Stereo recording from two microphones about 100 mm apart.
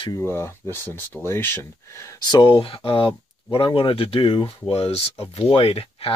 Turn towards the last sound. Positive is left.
turn(degrees=70)  # may be behind; listen again after turning